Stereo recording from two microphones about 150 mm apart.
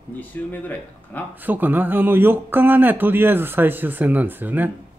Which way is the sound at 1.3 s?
10° right (ahead or behind).